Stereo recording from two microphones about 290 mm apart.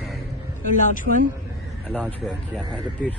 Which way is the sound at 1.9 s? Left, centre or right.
Centre.